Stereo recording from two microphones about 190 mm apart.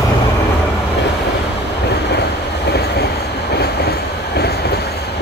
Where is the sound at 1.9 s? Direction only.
60° left (ahead or behind).